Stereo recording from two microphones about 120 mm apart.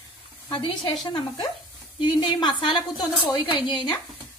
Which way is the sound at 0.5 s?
45° left (ahead or behind).